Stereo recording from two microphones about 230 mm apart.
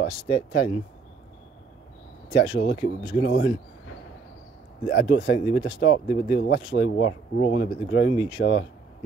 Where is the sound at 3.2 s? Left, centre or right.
Left.